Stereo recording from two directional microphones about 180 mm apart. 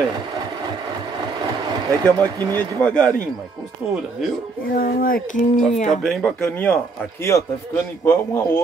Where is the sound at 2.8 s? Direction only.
5° left (ahead or behind).